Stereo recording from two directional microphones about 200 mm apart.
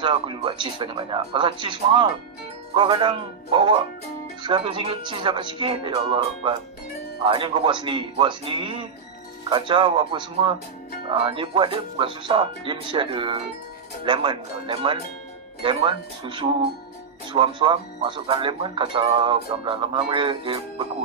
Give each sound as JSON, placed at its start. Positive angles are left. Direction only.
{"t": 0.0, "sound": "speech", "side_deg": -25}